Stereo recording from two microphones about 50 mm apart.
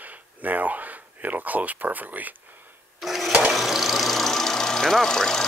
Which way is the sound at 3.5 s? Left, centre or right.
Centre.